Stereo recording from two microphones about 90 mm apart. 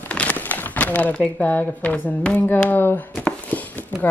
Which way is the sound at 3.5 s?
20° left (ahead or behind).